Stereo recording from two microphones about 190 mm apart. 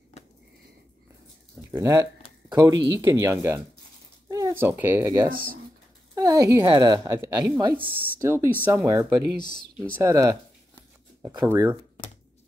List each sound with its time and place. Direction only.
0.1 s a sound: 35° left (ahead or behind)
1.7 s speech: 15° right (ahead or behind)
5.3 s speech: 50° right (ahead or behind)
6.1 s a woman's voice: 15° right (ahead or behind)